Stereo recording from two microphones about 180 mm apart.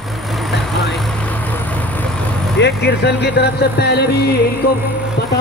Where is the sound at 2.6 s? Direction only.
70° left (ahead or behind).